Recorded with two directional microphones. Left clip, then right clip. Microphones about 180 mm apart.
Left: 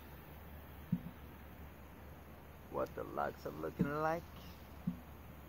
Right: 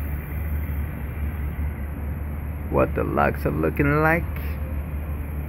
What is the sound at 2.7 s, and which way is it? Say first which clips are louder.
Speech: right 19 dB; 10° right (ahead or behind).